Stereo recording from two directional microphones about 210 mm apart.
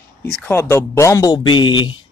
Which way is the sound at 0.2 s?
5° left (ahead or behind).